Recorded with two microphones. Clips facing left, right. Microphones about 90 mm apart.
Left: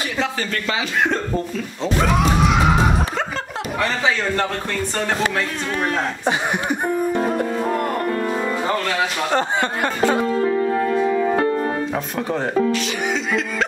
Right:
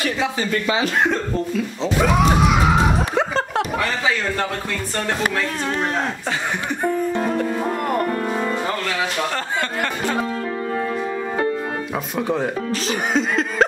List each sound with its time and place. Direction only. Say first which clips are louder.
0.2 s speech: right 2 dB; 15° right (ahead or behind)
6.2 s music: left 3 dB; 20° left (ahead or behind)
9.3 s speech: left 4 dB; 20° left (ahead or behind)
12.7 s music: right 2 dB; 40° right (ahead or behind)